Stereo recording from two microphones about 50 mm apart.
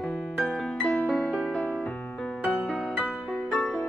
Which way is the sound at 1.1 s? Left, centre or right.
Centre.